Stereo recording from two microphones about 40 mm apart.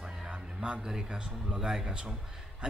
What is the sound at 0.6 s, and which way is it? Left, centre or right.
Speech, right.